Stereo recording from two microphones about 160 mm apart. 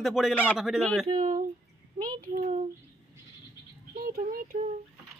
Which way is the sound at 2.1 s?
55° right (ahead or behind).